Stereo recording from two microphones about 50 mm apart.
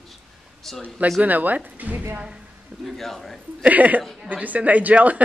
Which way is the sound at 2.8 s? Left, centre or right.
Centre.